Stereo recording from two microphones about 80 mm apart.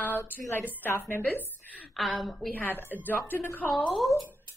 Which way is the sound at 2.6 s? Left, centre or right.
Left.